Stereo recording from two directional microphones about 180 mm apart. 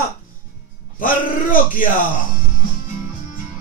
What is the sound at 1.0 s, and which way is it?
Speech, 50° left (ahead or behind).